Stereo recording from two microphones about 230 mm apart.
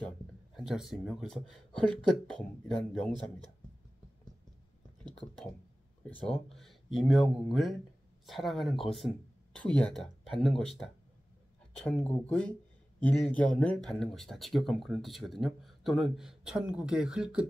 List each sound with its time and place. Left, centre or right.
0.6 s speech: centre
6.0 s speech: centre